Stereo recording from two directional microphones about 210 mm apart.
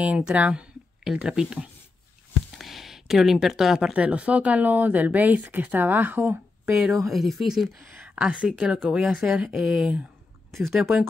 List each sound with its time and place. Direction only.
0.0 s speech: 5° right (ahead or behind)